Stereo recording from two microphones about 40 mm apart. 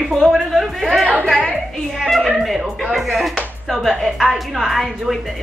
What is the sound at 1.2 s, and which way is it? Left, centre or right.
Speech, centre.